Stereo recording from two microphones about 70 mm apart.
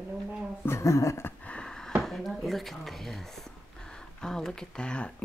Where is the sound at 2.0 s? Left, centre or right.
Centre.